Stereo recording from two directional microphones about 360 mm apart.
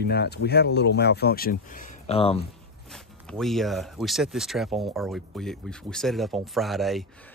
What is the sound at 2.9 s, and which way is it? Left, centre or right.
Speech, centre.